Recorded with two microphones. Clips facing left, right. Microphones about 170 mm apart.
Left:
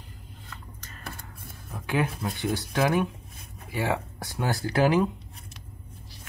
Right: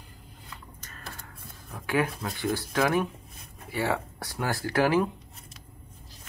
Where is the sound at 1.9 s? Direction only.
20° left (ahead or behind).